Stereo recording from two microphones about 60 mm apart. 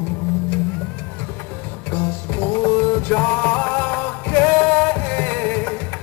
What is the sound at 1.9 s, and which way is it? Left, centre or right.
Music, left.